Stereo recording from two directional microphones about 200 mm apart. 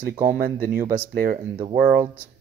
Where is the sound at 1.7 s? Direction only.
35° right (ahead or behind).